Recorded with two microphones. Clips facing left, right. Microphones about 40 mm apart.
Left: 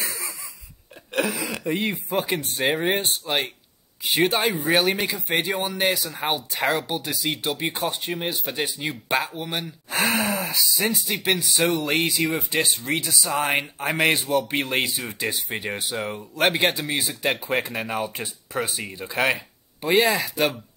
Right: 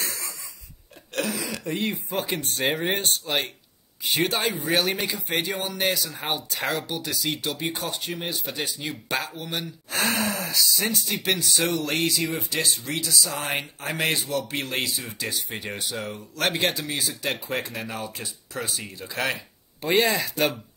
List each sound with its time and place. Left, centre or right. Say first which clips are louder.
0.0 s a sound: left 2 dB; centre
2.1 s speech: left 5 dB; centre
19.8 s speech: left 2 dB; centre